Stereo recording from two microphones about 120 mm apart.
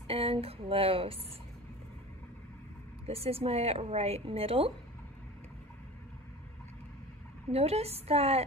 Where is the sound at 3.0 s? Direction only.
55° right (ahead or behind).